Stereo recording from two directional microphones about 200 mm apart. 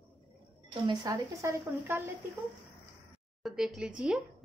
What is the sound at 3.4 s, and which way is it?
Speech, 5° right (ahead or behind).